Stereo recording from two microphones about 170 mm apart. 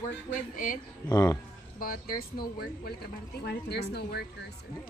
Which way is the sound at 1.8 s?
55° left (ahead or behind).